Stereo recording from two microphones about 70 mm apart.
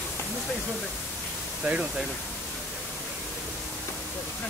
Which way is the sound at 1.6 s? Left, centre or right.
Centre.